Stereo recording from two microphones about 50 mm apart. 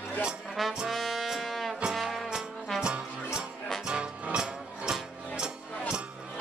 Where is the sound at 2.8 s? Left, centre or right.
Centre.